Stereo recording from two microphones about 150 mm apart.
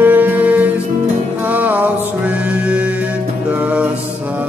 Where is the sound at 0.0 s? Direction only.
10° right (ahead or behind).